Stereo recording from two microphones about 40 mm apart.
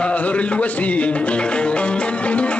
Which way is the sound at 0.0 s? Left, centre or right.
Left.